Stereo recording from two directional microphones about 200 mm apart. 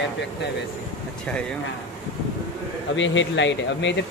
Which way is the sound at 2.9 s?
65° left (ahead or behind).